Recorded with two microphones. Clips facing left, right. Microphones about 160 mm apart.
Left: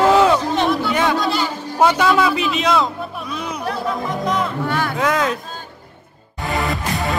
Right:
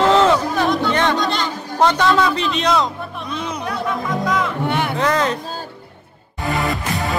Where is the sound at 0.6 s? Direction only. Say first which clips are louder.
Even; 5° left (ahead or behind).